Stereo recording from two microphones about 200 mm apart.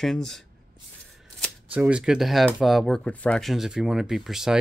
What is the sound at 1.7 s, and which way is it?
Speech, 5° right (ahead or behind).